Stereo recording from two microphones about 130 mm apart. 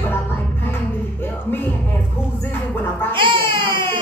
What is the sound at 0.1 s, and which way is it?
Music, 15° left (ahead or behind).